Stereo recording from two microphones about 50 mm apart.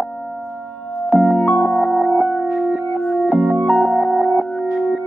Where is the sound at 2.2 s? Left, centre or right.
Right.